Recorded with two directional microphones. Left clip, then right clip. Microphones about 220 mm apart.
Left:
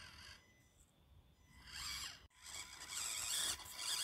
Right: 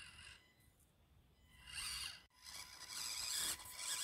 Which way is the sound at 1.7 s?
25° right (ahead or behind).